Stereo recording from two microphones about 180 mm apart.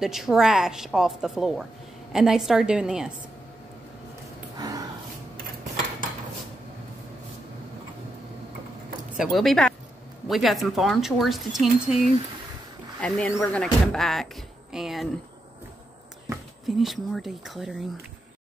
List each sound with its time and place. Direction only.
0.0 s speech: centre (ahead or behind)
4.6 s snort: 20° right (ahead or behind)
9.1 s speech: centre (ahead or behind)
13.0 s speech: 10° left (ahead or behind)
16.6 s speech: centre (ahead or behind)